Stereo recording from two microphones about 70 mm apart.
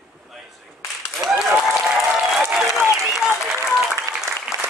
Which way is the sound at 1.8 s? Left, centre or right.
Centre.